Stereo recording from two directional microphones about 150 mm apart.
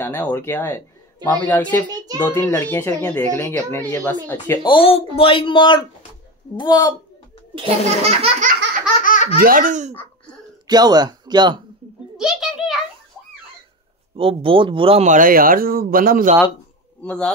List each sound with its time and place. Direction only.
0.0 s speech: 15° left (ahead or behind)
4.6 s speech: 35° left (ahead or behind)
7.5 s speech: 40° right (ahead or behind)
9.0 s laughter: 60° left (ahead or behind)
9.4 s speech: 65° right (ahead or behind)
10.7 s speech: 25° right (ahead or behind)
12.2 s a sound: 5° right (ahead or behind)
14.1 s speech: 35° right (ahead or behind)
15.0 s speech: 65° right (ahead or behind)
17.0 s speech: 5° left (ahead or behind)